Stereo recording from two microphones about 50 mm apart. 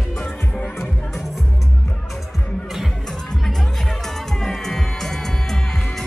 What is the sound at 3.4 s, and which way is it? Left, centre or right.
Music, centre.